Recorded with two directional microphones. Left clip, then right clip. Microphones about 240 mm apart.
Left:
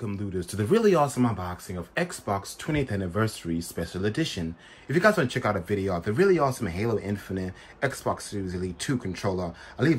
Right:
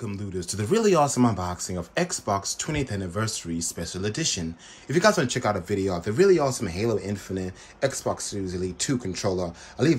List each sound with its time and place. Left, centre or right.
0.4 s speech: centre